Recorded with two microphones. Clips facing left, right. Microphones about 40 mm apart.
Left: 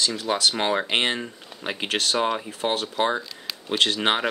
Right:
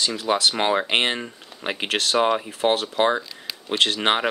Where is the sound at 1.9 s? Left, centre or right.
Centre.